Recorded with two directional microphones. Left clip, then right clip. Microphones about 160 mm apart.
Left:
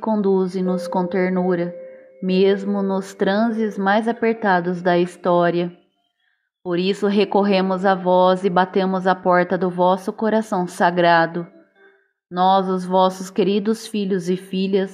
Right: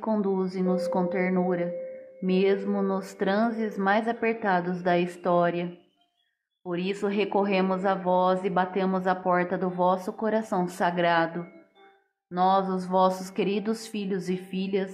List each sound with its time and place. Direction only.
0.0 s a woman's voice: 30° left (ahead or behind)